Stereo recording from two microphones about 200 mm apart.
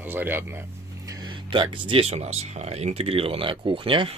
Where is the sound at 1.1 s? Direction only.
20° right (ahead or behind).